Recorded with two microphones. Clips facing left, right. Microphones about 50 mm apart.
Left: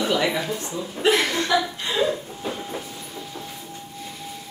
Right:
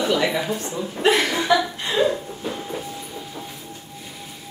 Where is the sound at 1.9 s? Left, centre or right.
Centre.